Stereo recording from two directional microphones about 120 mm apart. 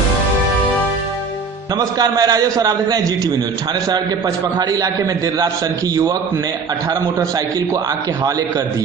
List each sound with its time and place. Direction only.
1.8 s a man's voice: 35° right (ahead or behind)
4.6 s a man's voice: 30° right (ahead or behind)